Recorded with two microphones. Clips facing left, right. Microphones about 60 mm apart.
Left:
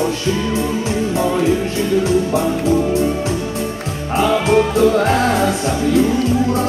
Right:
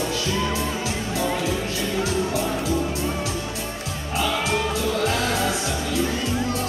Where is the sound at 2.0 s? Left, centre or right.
Left.